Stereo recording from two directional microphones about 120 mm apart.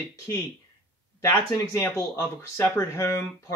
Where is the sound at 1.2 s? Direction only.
25° left (ahead or behind).